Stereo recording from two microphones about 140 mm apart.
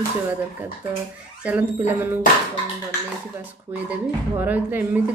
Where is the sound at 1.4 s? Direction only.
15° right (ahead or behind).